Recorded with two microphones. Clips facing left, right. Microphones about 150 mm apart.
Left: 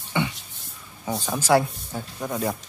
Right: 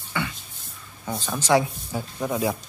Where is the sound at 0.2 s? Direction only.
20° left (ahead or behind).